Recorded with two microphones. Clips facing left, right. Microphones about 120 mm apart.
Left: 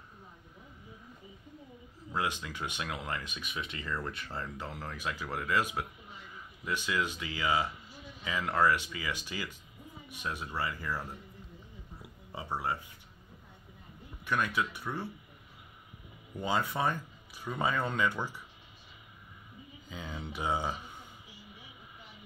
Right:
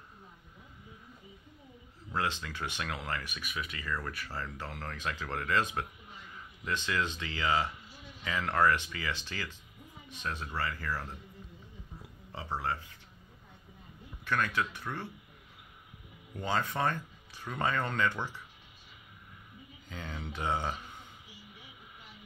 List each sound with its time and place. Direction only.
2.1 s speech: 15° left (ahead or behind)
12.3 s speech: 15° left (ahead or behind)
14.2 s speech: 15° left (ahead or behind)
16.3 s speech: 10° left (ahead or behind)
19.9 s speech: 10° left (ahead or behind)